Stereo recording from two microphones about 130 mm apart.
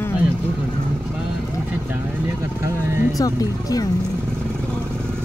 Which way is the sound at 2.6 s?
20° right (ahead or behind).